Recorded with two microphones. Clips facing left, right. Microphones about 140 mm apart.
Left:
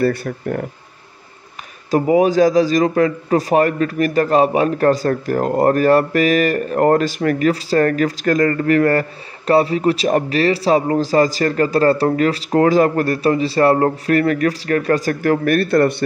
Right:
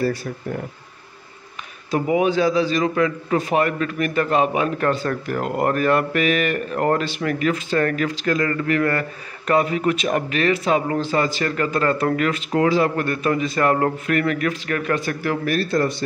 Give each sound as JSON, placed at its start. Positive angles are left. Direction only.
{"t": 0.0, "sound": "speech", "side_deg": 60}
{"t": 1.9, "sound": "a man's voice", "side_deg": 40}